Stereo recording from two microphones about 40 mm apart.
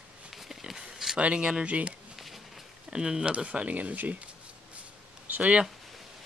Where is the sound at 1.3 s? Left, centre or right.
Right.